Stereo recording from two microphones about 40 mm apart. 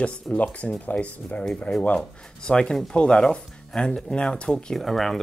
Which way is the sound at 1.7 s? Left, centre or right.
Left.